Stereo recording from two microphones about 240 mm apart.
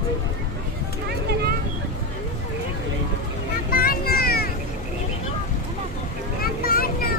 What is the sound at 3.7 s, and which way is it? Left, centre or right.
Vehicle, left.